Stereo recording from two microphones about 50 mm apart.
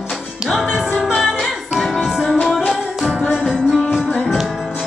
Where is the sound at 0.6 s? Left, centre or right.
Centre.